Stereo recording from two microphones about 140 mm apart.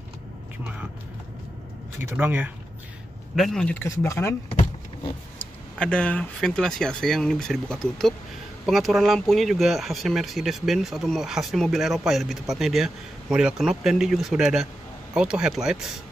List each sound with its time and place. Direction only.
2.0 s speech: 15° right (ahead or behind)
3.3 s speech: centre (ahead or behind)
3.9 s speech: 20° left (ahead or behind)
5.8 s speech: 10° left (ahead or behind)